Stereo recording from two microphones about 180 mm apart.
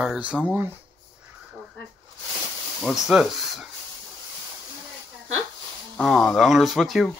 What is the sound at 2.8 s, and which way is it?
Speech, centre (ahead or behind).